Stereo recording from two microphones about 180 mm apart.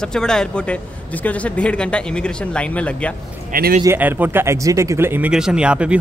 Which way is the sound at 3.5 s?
50° right (ahead or behind).